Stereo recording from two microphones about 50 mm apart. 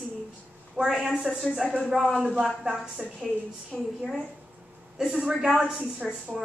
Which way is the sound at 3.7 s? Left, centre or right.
Centre.